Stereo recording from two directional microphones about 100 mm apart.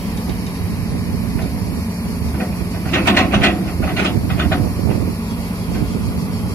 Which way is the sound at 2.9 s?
25° left (ahead or behind).